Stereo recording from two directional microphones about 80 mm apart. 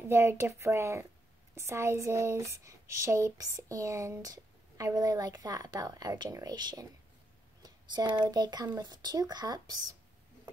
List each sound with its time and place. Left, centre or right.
0.1 s speech: right
7.6 s a sound: right
8.3 s speech: right